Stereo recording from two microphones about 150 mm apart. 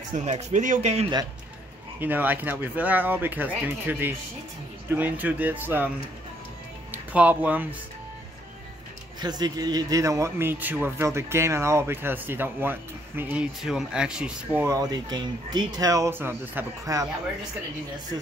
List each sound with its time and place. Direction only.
0.1 s speech: 50° right (ahead or behind)
2.0 s a man's voice: 10° right (ahead or behind)
6.9 s speech: 10° right (ahead or behind)
9.2 s a man's voice: 25° right (ahead or behind)